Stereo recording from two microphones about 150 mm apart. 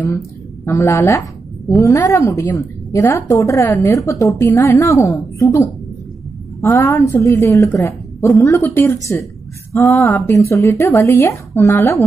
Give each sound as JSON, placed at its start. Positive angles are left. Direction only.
{"t": 0.7, "sound": "a woman's voice", "side_deg": 20}